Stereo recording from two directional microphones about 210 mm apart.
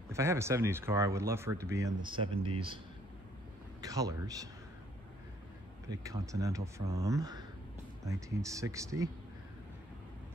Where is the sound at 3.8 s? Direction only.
15° right (ahead or behind).